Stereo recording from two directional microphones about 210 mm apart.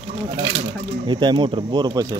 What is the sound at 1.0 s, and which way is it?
Speech, 20° right (ahead or behind).